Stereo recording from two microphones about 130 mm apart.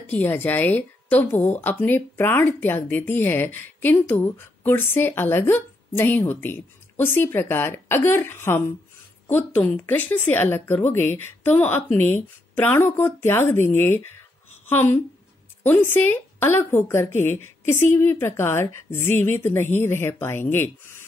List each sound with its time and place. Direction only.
0.0 s a woman's voice: 15° left (ahead or behind)